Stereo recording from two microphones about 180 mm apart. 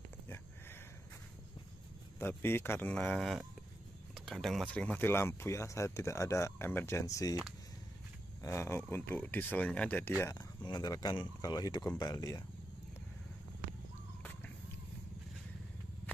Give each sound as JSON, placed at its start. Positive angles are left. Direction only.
{"t": 2.1, "sound": "speech", "side_deg": 10}
{"t": 8.4, "sound": "speech", "side_deg": 15}
{"t": 10.2, "sound": "speech", "side_deg": 25}